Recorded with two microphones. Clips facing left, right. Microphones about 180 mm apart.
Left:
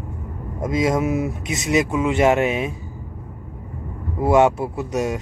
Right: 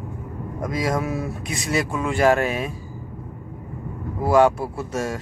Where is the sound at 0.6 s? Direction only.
20° left (ahead or behind).